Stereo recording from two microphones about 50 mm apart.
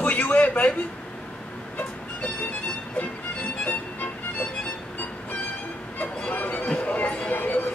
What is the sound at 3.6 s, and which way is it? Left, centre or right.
Music, left.